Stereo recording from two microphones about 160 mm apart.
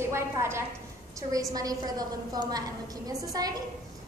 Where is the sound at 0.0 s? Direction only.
15° right (ahead or behind).